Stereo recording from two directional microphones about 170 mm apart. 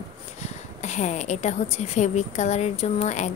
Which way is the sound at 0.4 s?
45° left (ahead or behind).